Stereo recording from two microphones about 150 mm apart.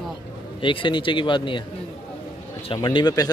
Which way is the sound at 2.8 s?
30° left (ahead or behind).